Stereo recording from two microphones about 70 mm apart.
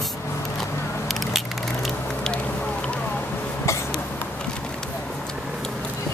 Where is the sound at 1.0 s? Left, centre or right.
Centre.